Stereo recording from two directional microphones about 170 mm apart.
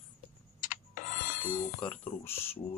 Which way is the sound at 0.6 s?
50° left (ahead or behind).